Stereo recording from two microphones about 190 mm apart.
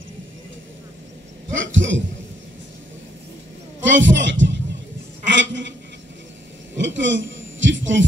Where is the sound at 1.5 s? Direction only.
85° right.